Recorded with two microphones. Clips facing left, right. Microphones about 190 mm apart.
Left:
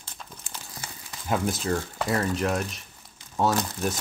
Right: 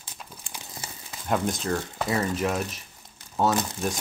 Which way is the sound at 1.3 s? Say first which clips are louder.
Even; 5° left (ahead or behind).